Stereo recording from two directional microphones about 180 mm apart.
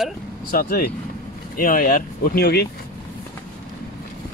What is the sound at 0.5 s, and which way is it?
Speech, 55° left (ahead or behind).